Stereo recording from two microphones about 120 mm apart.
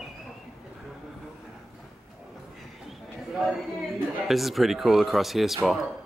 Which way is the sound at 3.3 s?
Centre (ahead or behind).